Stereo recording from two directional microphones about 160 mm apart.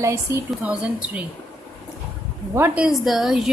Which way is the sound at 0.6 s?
10° right (ahead or behind).